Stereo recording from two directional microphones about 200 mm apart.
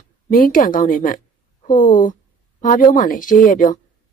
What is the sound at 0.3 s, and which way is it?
A woman's voice, 45° left (ahead or behind).